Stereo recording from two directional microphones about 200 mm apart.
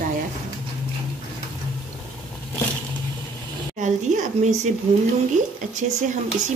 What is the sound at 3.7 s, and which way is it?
Speech, 40° right (ahead or behind).